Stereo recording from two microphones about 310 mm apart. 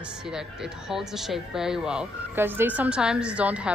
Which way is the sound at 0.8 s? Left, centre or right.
Centre.